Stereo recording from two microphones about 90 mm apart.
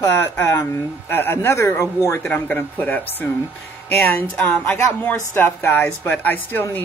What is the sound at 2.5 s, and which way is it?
Speech, 20° left (ahead or behind).